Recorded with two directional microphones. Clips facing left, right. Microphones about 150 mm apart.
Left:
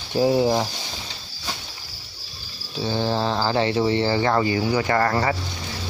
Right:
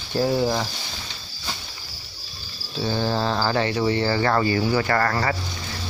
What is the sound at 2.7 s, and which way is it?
Speech, 20° left (ahead or behind).